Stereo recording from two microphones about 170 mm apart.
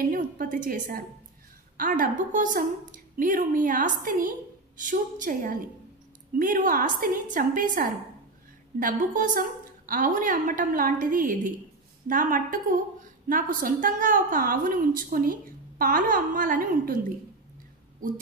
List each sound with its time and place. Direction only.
0.1 s a woman's voice: 55° right (ahead or behind)